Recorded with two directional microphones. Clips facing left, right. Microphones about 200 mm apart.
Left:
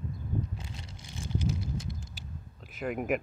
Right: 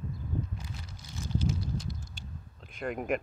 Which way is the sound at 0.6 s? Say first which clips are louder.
Even; 25° left (ahead or behind).